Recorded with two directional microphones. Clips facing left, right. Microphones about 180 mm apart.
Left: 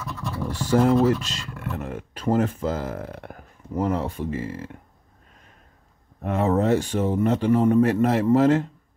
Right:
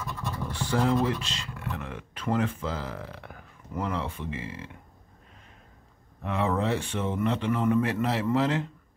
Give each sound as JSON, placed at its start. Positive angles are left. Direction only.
{"t": 0.5, "sound": "speech", "side_deg": 40}
{"t": 6.2, "sound": "speech", "side_deg": 45}